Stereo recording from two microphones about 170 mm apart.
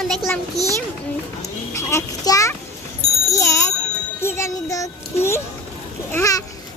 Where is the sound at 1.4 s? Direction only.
15° left (ahead or behind).